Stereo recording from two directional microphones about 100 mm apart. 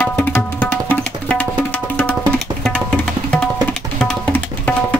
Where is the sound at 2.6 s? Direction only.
5° left (ahead or behind).